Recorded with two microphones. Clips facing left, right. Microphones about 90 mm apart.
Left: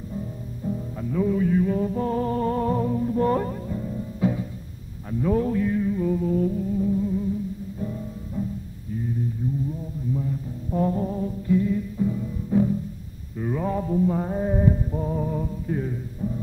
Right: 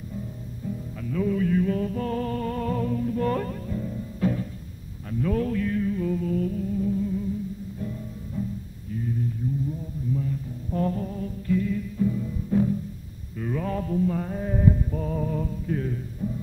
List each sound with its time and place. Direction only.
0.7 s music: 20° left (ahead or behind)
8.4 s music: 15° left (ahead or behind)
10.1 s music: 15° left (ahead or behind)